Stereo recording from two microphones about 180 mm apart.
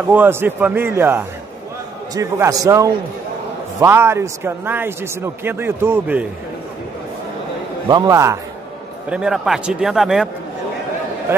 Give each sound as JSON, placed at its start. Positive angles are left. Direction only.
{"t": 0.1, "sound": "a man's voice", "side_deg": -10}
{"t": 7.9, "sound": "a man's voice", "side_deg": -20}
{"t": 9.1, "sound": "speech", "side_deg": -5}